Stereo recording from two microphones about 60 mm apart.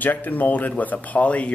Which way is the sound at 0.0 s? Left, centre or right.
Left.